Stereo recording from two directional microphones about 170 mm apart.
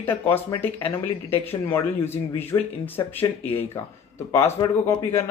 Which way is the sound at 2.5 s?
20° left (ahead or behind).